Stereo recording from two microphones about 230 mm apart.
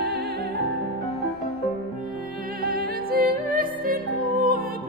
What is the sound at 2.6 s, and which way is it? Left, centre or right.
Music, right.